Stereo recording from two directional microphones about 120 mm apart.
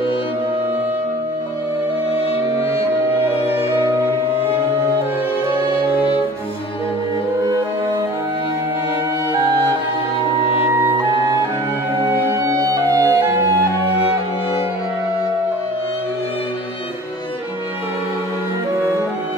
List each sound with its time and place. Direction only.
5.9 s music: 40° left (ahead or behind)
12.3 s music: 25° right (ahead or behind)